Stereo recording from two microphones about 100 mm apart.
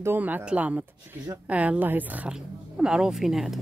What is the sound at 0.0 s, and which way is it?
A woman's voice, 20° right (ahead or behind).